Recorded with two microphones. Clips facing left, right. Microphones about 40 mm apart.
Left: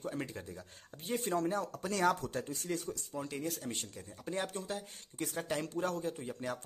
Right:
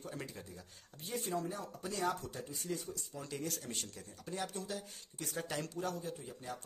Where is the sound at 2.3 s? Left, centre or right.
Left.